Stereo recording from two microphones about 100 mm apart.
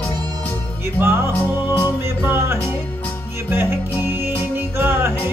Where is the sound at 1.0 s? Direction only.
25° right (ahead or behind).